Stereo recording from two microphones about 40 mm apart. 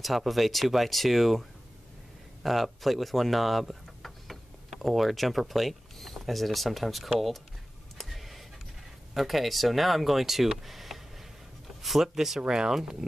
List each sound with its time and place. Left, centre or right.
0.0 s speech: centre
2.4 s speech: centre
8.0 s a sound: centre
9.1 s speech: centre
12.4 s speech: centre